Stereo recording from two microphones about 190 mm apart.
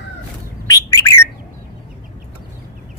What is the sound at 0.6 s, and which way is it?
Bird, 15° left (ahead or behind).